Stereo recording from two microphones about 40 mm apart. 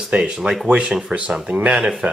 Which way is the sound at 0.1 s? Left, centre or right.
Right.